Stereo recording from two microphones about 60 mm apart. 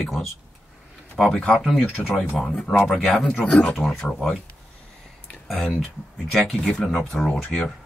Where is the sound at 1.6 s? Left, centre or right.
Centre.